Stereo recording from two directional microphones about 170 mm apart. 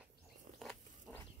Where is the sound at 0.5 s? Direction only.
Centre (ahead or behind).